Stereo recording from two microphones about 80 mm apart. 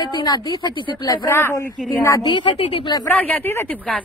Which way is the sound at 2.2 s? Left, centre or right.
Left.